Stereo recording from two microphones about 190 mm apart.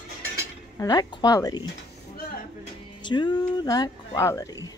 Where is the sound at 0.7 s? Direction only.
20° left (ahead or behind).